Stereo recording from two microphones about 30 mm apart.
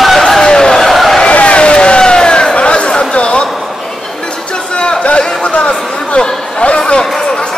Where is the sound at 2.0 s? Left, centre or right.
Left.